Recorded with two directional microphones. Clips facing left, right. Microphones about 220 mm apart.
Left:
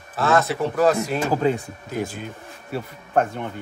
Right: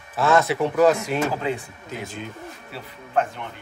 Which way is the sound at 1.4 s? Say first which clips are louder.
Left 5 dB; 45° left (ahead or behind).